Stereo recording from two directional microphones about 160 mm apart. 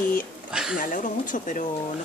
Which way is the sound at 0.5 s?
5° right (ahead or behind).